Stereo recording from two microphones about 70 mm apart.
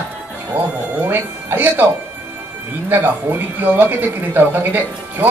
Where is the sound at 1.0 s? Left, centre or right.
Right.